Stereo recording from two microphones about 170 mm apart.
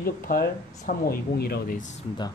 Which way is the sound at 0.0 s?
60° left (ahead or behind).